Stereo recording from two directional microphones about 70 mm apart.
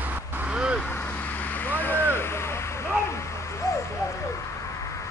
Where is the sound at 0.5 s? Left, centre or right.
Centre.